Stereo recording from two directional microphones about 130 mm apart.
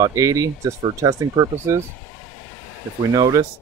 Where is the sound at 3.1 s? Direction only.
30° right (ahead or behind).